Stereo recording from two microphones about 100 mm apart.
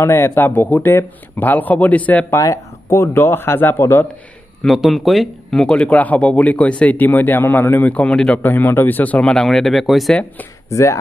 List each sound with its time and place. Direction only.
0.0 s speech: 25° left (ahead or behind)
2.3 s speech: 30° left (ahead or behind)
4.6 s speech: centre (ahead or behind)
10.7 s speech: 30° left (ahead or behind)